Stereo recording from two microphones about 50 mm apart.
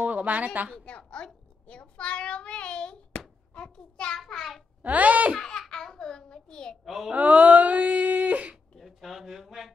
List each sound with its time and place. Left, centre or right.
0.0 s a sound: right
0.7 s a child's voice: centre
4.8 s speech: right
5.4 s a sound: centre
6.8 s a child's voice: centre
7.1 s speech: right
8.7 s speech: centre